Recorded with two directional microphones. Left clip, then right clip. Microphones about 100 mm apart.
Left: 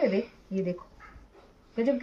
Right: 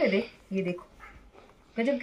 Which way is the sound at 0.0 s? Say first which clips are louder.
Right 1 dB; 25° left (ahead or behind).